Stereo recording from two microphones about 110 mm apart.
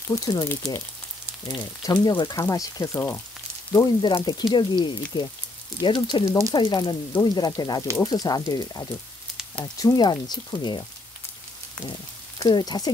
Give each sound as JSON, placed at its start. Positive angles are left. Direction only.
{"t": 0.1, "sound": "speech", "side_deg": 35}